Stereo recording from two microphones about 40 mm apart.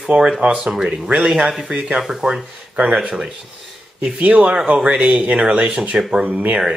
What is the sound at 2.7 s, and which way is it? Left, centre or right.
Speech, right.